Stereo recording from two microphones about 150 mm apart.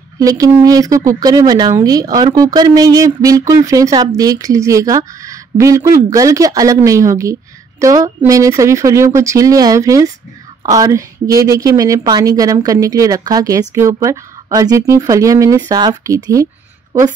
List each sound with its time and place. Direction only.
0.2 s a woman's voice: 20° right (ahead or behind)